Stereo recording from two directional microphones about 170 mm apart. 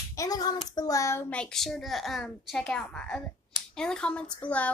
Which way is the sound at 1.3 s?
5° left (ahead or behind).